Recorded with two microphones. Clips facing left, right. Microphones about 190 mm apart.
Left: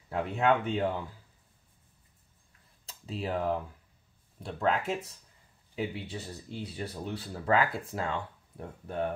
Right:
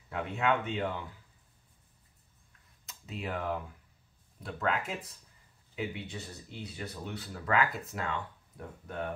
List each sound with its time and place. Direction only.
0.1 s speech: 35° left (ahead or behind)
2.9 s speech: 30° left (ahead or behind)
5.8 s speech: 30° left (ahead or behind)